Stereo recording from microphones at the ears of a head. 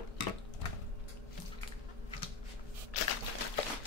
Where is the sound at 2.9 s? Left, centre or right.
Left.